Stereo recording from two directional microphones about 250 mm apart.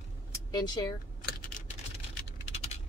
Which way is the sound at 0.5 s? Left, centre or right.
Centre.